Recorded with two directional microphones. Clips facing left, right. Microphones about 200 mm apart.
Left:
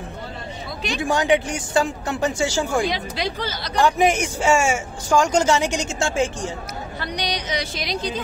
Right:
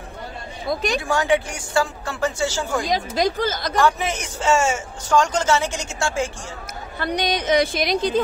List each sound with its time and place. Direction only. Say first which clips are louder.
1.0 s a man's voice: left 4 dB; 20° left (ahead or behind)
2.8 s a woman's voice: right 3 dB; 45° right (ahead or behind)
3.7 s a man's voice: left 5 dB; 15° left (ahead or behind)
7.0 s a woman's voice: right 6 dB; 50° right (ahead or behind)